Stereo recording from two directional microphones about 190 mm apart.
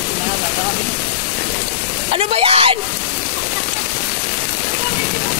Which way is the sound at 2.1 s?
30° right (ahead or behind).